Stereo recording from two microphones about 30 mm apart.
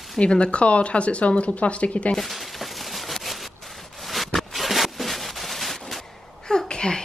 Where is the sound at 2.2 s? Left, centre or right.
Centre.